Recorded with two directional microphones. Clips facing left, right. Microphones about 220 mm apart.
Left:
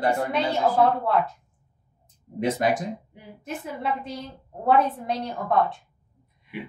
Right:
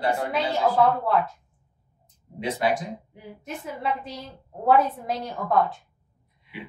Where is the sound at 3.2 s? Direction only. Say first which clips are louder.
Left 1 dB; centre (ahead or behind).